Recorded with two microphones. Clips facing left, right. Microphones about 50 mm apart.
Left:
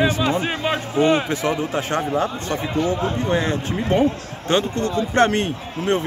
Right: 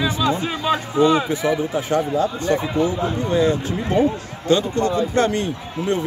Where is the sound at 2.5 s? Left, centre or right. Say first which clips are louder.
Right 4 dB; centre.